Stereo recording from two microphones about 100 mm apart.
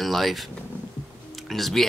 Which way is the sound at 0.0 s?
Centre (ahead or behind).